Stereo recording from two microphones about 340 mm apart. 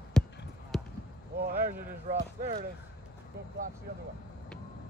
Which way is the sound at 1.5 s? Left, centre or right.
Right.